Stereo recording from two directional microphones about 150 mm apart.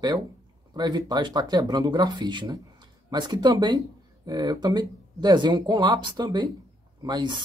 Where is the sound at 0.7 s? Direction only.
30° right (ahead or behind).